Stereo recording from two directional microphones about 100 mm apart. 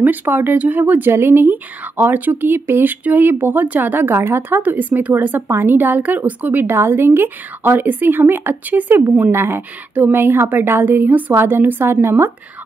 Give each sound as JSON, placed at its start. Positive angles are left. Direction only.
{"t": 0.0, "sound": "speech", "side_deg": -20}